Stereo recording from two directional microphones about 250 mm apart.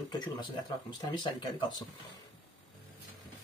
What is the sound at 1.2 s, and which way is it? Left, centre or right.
Speech, centre.